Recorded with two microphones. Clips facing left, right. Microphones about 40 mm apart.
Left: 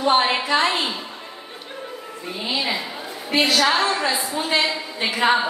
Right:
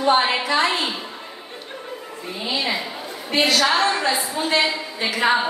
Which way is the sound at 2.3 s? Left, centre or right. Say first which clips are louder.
Even; centre.